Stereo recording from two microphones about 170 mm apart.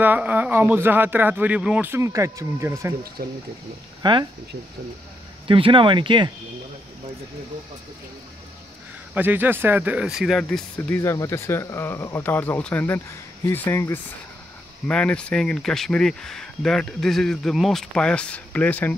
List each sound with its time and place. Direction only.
0.0 s speech: 10° right (ahead or behind)
3.2 s speech: 60° right (ahead or behind)
4.0 s speech: 25° right (ahead or behind)
5.5 s speech: 30° right (ahead or behind)
9.1 s speech: 10° right (ahead or behind)
11.0 s speech: 15° left (ahead or behind)